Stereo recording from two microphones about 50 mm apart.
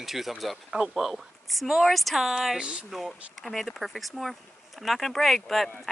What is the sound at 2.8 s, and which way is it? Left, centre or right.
Speech, centre.